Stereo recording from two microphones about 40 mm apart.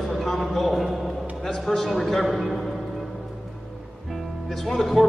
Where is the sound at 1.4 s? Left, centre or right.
Centre.